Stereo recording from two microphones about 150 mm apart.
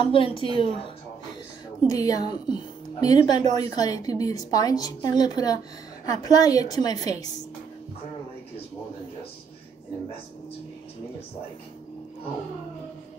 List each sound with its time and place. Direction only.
0.0 s a woman's voice: 35° left (ahead or behind)
1.9 s a woman's voice: 25° left (ahead or behind)